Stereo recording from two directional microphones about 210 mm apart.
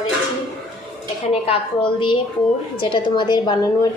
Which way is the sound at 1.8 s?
25° left (ahead or behind).